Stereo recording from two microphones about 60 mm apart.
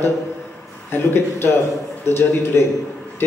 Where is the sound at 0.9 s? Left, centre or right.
Left.